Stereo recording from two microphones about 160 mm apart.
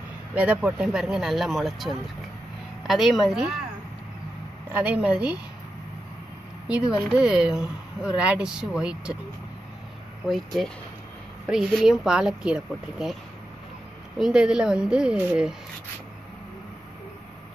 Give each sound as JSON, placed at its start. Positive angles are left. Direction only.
{"t": 0.3, "sound": "speech", "side_deg": -10}
{"t": 4.7, "sound": "a woman's voice", "side_deg": -5}
{"t": 7.0, "sound": "speech", "side_deg": -5}
{"t": 10.2, "sound": "speech", "side_deg": 0}